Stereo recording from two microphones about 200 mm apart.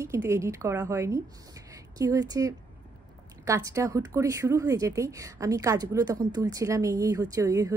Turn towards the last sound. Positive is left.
turn(degrees=-15)  # may be behind; listen again after turning